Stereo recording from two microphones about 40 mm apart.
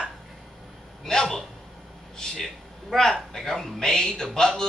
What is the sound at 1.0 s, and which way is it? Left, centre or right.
A man's voice, centre.